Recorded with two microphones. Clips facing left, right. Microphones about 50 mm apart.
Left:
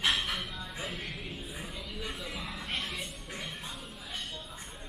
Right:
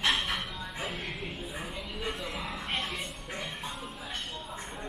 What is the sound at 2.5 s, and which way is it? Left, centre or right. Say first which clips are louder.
Music: right 2 dB; right.